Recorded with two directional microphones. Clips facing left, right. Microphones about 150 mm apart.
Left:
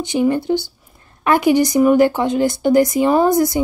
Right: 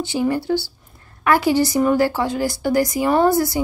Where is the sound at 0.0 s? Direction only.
20° left (ahead or behind).